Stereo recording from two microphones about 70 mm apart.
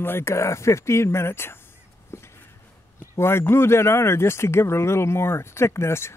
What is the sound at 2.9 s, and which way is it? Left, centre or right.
Speech, left.